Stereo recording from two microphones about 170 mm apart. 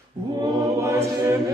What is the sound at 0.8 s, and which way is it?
Choir, 15° right (ahead or behind).